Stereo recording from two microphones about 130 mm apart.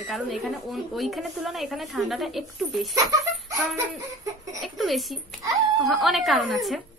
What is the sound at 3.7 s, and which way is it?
Giggle, 25° right (ahead or behind).